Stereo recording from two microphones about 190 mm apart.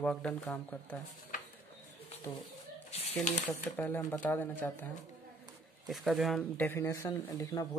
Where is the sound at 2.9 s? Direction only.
35° left (ahead or behind).